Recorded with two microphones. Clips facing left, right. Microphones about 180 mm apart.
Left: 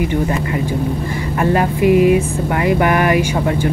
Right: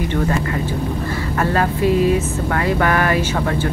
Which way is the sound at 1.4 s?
15° left (ahead or behind).